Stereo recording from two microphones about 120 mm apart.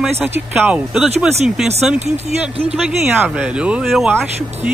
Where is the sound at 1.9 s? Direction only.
65° right (ahead or behind).